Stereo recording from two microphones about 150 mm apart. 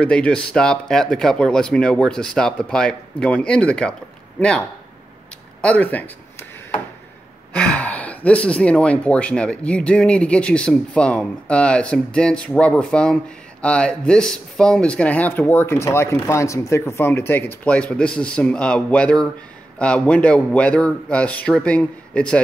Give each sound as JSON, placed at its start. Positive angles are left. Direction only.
{"t": 0.0, "sound": "speech", "side_deg": 5}
{"t": 7.5, "sound": "speech", "side_deg": 10}